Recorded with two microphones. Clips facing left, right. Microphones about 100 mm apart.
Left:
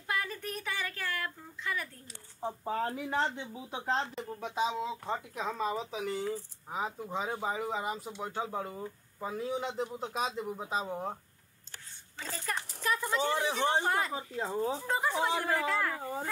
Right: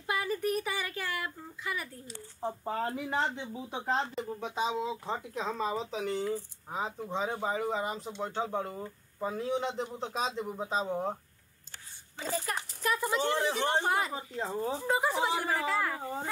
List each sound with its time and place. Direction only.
0.0 s a woman's voice: 10° right (ahead or behind)
12.2 s a child's voice: 10° right (ahead or behind)
13.3 s speech: 15° left (ahead or behind)
13.8 s a child's voice: 15° right (ahead or behind)
14.1 s speech: 5° left (ahead or behind)